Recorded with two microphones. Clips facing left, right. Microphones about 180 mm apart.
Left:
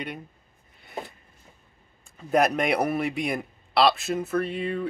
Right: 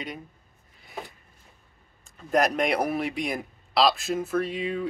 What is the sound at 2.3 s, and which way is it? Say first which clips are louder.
A man's voice: left 1 dB; 5° left (ahead or behind).